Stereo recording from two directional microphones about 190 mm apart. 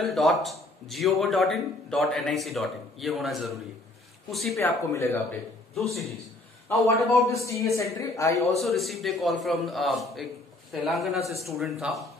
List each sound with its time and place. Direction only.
0.0 s a man's voice: centre (ahead or behind)
4.6 s speech: 15° left (ahead or behind)
5.8 s a man's voice: centre (ahead or behind)
6.7 s speech: 15° left (ahead or behind)
8.5 s a man's voice: centre (ahead or behind)